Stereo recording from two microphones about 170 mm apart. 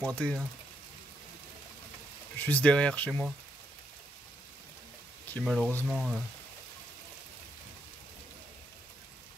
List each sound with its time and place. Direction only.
0.0 s speech: 5° left (ahead or behind)
2.3 s speech: 10° left (ahead or behind)
5.2 s speech: 5° left (ahead or behind)
5.9 s speech: 5° right (ahead or behind)